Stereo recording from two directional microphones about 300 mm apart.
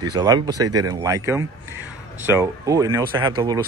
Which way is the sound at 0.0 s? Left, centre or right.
Centre.